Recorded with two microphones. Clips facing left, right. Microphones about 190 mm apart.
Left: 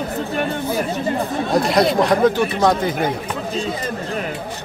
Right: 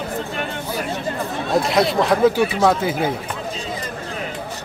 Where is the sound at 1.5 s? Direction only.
Centre (ahead or behind).